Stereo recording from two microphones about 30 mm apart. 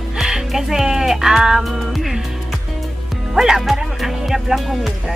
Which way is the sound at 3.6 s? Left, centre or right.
Centre.